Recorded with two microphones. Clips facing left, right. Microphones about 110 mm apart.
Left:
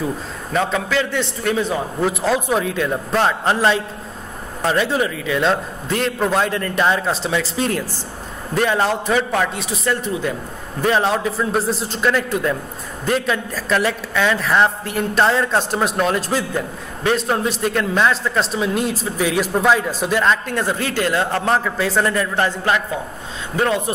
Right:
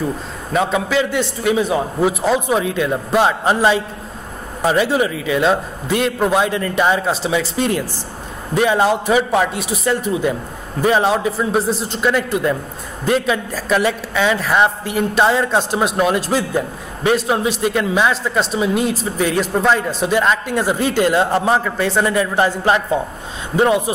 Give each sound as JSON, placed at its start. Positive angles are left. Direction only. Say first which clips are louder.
{"t": 0.5, "sound": "a man's voice", "louder": "right 2 dB", "side_deg": -10}
{"t": 21.4, "sound": "a man's voice", "louder": "right 2 dB", "side_deg": -5}